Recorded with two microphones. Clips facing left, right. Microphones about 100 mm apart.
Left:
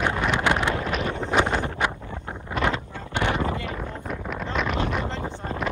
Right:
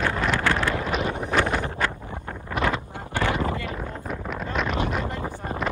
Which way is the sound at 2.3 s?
25° left (ahead or behind).